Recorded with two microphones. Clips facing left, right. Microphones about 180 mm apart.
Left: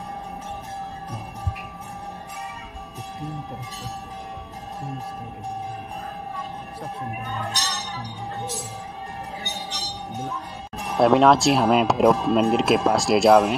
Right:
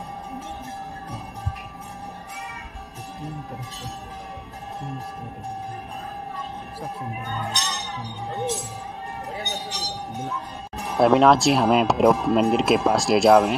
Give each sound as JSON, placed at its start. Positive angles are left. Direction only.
{"t": 7.4, "sound": "speech", "side_deg": 0}
{"t": 10.8, "sound": "speech", "side_deg": 0}